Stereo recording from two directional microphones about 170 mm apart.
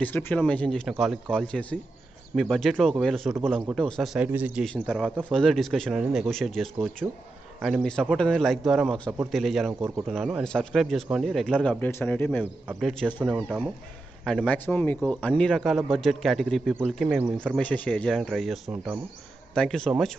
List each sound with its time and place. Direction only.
0.0 s a man's voice: 10° left (ahead or behind)
9.7 s a man's voice: 15° right (ahead or behind)
10.0 s a man's voice: centre (ahead or behind)
12.8 s a man's voice: 5° right (ahead or behind)